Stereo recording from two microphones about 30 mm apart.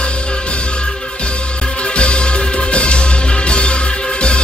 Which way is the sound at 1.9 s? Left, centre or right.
Left.